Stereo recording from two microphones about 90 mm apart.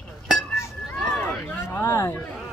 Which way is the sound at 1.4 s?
20° left (ahead or behind).